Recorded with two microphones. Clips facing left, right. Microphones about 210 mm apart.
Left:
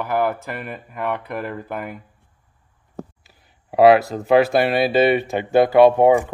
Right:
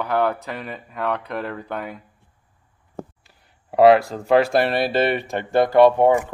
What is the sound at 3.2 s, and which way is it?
Speech, centre (ahead or behind).